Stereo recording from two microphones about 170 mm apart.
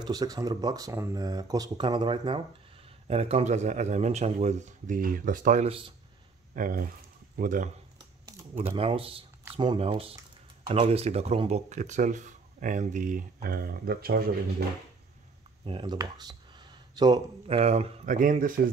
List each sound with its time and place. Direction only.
0.0 s speech: 20° right (ahead or behind); by 5.7 s 50° right (ahead or behind)
5.7 s speech: 30° right (ahead or behind)
6.5 s speech: 55° right (ahead or behind)
8.5 s speech: 35° right (ahead or behind); by 14.3 s 65° right (ahead or behind)
15.6 s a sound: 30° right (ahead or behind)
17.5 s speech: 35° right (ahead or behind)